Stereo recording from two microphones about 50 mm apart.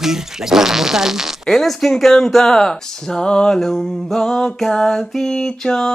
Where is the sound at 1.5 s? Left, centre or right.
Centre.